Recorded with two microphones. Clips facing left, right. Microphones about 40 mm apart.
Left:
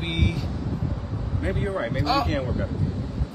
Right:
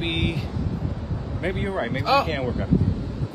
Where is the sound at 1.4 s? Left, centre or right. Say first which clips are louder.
Right 1 dB; right.